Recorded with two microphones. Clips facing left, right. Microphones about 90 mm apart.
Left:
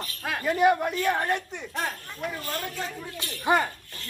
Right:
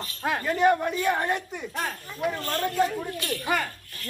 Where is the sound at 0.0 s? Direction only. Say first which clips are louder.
Right 4 dB; 30° right (ahead or behind).